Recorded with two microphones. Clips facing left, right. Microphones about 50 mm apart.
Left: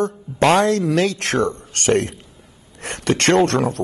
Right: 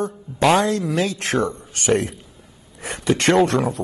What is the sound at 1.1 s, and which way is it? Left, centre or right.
Speech, left.